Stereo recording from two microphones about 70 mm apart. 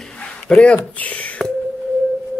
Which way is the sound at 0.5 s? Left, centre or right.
Centre.